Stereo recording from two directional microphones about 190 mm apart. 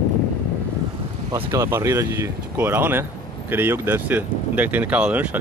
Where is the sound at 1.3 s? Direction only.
15° right (ahead or behind).